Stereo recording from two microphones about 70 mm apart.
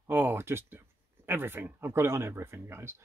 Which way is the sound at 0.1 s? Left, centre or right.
Right.